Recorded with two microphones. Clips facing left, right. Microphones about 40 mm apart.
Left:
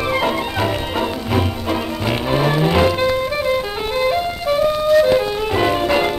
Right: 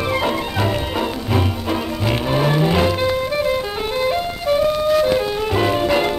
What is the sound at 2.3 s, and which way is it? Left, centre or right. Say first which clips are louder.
Music: left 1 dB; centre.